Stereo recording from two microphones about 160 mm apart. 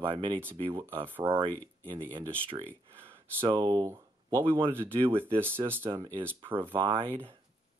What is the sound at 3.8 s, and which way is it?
Speech, 15° right (ahead or behind).